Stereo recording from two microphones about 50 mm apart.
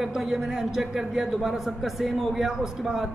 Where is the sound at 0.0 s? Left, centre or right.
Centre.